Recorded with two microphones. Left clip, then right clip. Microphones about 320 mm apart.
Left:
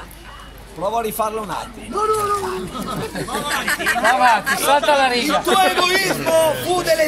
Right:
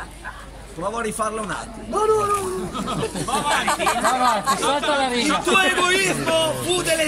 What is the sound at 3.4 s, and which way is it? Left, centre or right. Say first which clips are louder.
Speech: left 1 dB; centre.